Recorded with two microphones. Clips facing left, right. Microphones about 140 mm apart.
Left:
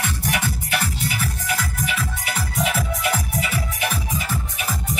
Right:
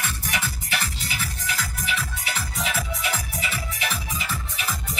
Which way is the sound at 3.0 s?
55° left (ahead or behind).